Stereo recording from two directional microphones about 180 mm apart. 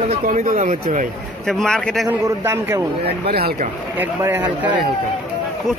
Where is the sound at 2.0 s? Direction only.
15° right (ahead or behind).